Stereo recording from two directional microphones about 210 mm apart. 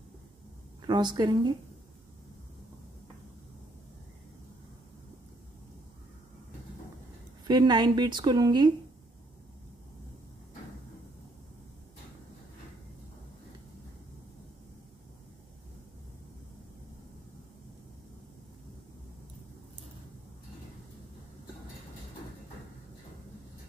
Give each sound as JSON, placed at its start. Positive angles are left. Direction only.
{"t": 0.8, "sound": "speech", "side_deg": -20}
{"t": 7.4, "sound": "speech", "side_deg": -20}